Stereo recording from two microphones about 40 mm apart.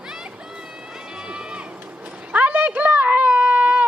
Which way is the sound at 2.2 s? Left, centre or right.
Right.